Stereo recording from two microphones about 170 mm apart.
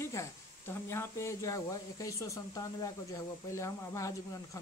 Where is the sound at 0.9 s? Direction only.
15° left (ahead or behind).